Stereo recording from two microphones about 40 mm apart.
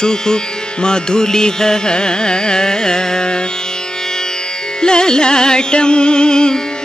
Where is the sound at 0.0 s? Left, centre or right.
Centre.